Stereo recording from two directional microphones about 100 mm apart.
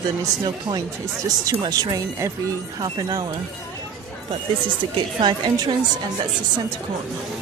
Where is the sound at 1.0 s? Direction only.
35° right (ahead or behind).